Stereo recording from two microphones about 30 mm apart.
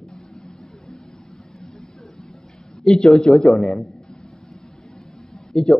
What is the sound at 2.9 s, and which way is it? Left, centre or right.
Speech, centre.